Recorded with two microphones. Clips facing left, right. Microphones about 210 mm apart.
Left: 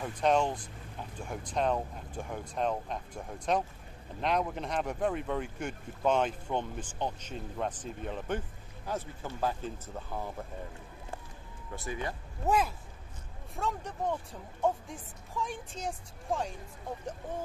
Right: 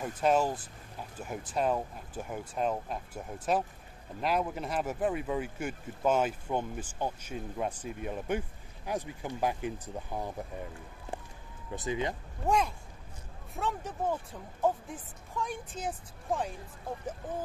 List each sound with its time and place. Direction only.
0.0 s a woman's voice: 5° right (ahead or behind)
11.7 s speech: 20° right (ahead or behind)
12.4 s a woman's voice: 5° left (ahead or behind)